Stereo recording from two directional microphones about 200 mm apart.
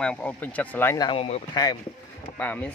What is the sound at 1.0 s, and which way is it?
Speech, 30° left (ahead or behind).